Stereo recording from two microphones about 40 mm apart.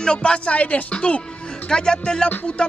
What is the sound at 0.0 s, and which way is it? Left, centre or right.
Music, left.